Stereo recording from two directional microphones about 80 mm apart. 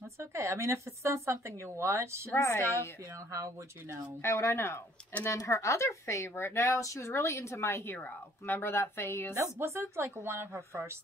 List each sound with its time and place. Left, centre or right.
0.2 s speech: right
2.3 s speech: left
3.3 s speech: right
4.2 s speech: left
9.3 s speech: right